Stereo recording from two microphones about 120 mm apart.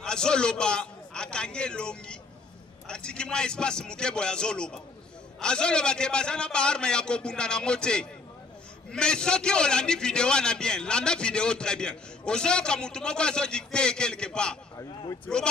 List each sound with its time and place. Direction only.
0.0 s a man's voice: 5° left (ahead or behind)